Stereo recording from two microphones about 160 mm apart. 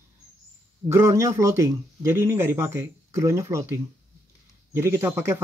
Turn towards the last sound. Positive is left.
turn(degrees=-15)  # may be behind; listen again after turning